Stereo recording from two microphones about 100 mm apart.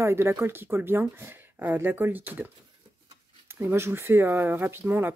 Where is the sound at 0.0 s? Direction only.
25° right (ahead or behind).